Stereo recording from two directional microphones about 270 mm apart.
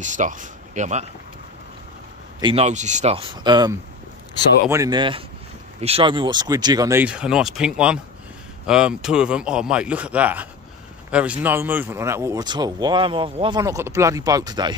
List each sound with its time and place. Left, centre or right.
0.0 s speech: right
2.4 s a man's voice: right